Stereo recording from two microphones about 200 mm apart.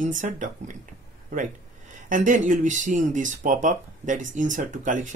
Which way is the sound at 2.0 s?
40° right (ahead or behind).